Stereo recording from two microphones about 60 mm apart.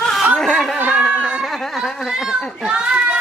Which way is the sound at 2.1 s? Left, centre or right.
Centre.